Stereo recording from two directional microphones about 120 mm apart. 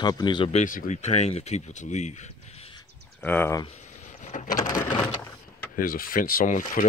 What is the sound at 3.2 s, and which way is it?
Speech, 15° left (ahead or behind).